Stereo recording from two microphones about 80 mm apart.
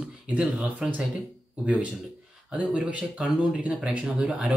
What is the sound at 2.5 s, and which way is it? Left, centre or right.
Speech, centre.